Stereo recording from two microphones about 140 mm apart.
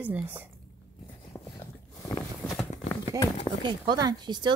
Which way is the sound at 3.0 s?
30° left (ahead or behind).